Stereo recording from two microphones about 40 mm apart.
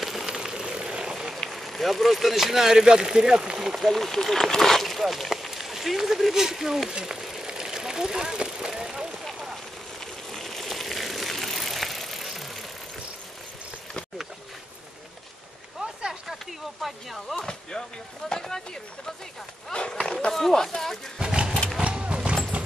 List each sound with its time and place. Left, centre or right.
0.0 s a sound: centre
0.3 s vehicle: centre
1.5 s speech: centre
3.7 s speech: centre
6.9 s speech: centre
7.2 s vehicle: centre
9.9 s vehicle: centre
16.8 s speech: centre
17.4 s speech: centre
19.9 s speech: centre
21.2 s vehicle: right
21.7 s horse: right